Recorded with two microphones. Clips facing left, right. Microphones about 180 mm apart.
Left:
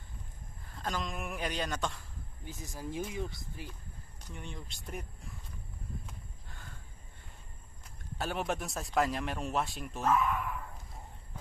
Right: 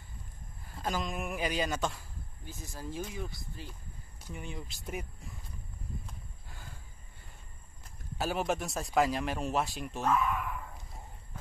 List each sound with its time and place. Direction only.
0.7 s a man's voice: 5° right (ahead or behind)
2.4 s speech: 15° left (ahead or behind)
4.2 s a man's voice: 5° right (ahead or behind)
6.0 s a sound: 5° right (ahead or behind)
8.2 s a man's voice: centre (ahead or behind)